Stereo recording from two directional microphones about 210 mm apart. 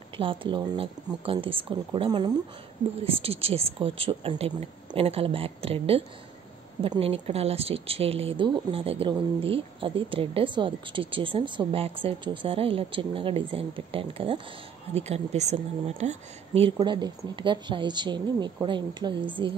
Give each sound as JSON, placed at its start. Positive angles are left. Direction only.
{"t": 0.2, "sound": "a woman's voice", "side_deg": -25}